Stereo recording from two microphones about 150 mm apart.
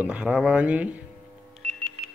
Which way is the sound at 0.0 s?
5° right (ahead or behind).